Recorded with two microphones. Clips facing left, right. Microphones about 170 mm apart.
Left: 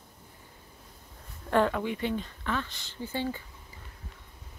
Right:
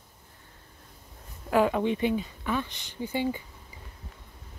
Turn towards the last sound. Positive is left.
turn(degrees=-15)  # may be behind; listen again after turning